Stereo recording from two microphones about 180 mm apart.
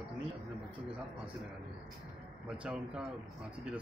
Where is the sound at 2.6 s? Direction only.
5° right (ahead or behind).